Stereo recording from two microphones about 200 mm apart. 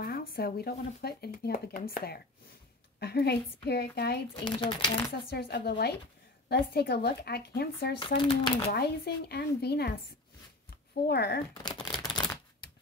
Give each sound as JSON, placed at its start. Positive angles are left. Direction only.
{"t": 0.0, "sound": "speech", "side_deg": 50}
{"t": 4.5, "sound": "speech", "side_deg": 20}
{"t": 5.3, "sound": "speech", "side_deg": 55}
{"t": 8.2, "sound": "speech", "side_deg": 25}
{"t": 8.7, "sound": "speech", "side_deg": 55}
{"t": 11.1, "sound": "speech", "side_deg": 55}
{"t": 11.6, "sound": "a sound", "side_deg": 20}